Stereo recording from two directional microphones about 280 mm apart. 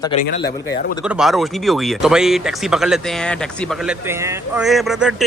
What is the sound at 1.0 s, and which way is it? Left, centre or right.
Speech, centre.